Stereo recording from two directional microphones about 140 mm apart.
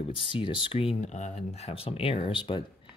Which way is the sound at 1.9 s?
45° left (ahead or behind).